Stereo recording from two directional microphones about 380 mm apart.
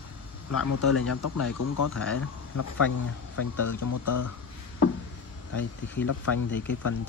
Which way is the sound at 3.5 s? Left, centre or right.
Left.